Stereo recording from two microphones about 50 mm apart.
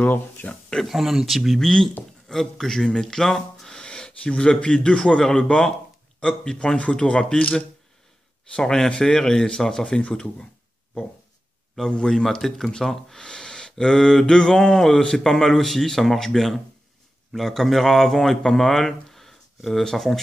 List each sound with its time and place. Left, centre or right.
0.0 s speech: left
0.8 s a man's voice: centre
8.5 s a man's voice: centre
11.9 s a man's voice: centre